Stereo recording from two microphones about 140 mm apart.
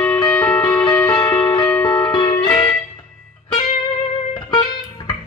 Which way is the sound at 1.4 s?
35° left (ahead or behind).